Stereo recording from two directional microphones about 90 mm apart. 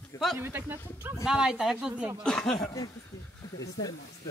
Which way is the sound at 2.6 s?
40° left (ahead or behind).